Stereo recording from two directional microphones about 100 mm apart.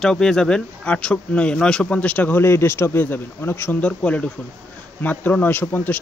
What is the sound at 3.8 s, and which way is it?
Speech, 10° left (ahead or behind).